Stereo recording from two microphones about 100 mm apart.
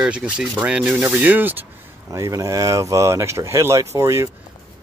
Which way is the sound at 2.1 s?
35° right (ahead or behind).